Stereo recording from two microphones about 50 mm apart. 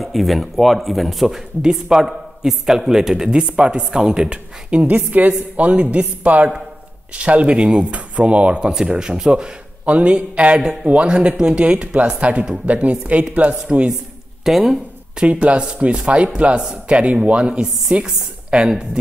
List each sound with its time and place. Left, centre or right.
0.0 s speech: centre
1.6 s a man's voice: centre
4.8 s a woman's voice: right
13.7 s a man's voice: centre
14.4 s speech: centre
15.1 s speech: right